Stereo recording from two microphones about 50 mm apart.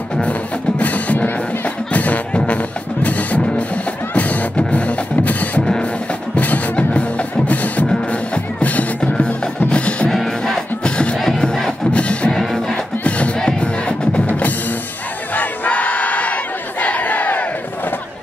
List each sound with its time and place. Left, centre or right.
0.2 s music: left
10.0 s music: centre
11.9 s music: left
12.3 s music: centre
14.2 s music: left
15.3 s battle cry: left
16.8 s crowd: left